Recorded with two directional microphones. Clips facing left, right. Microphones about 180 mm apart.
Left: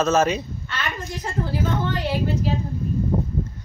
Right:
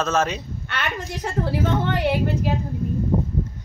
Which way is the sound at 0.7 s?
60° right (ahead or behind).